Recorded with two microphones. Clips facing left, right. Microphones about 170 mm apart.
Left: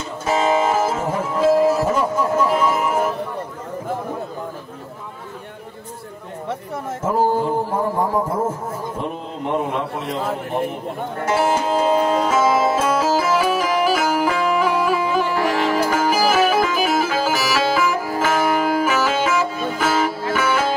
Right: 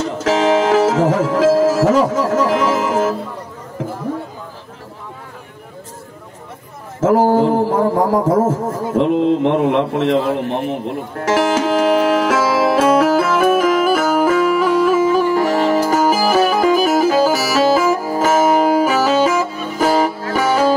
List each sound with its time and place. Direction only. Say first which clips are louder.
0.0 s music: right 5 dB; 90° right
7.0 s a sound: right 7 dB; 90° right
8.1 s a man's voice: right 7 dB; 90° right
11.2 s music: right 4 dB; 90° right; by 20.7 s 40° right (ahead or behind)